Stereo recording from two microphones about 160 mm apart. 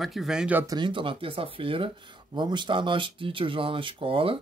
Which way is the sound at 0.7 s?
30° right (ahead or behind).